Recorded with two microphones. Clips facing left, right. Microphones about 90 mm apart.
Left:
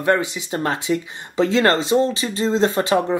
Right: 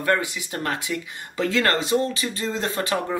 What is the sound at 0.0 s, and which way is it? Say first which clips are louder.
Speech: left 4 dB; 25° left (ahead or behind).